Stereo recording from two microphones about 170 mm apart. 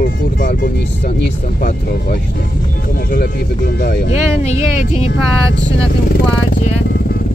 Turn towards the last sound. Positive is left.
turn(degrees=55)  # may be behind; listen again after turning